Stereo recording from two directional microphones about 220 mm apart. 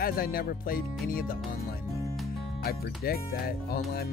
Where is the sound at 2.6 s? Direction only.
45° left (ahead or behind).